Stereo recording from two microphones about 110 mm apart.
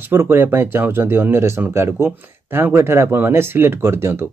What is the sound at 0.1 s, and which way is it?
Speech, 20° right (ahead or behind).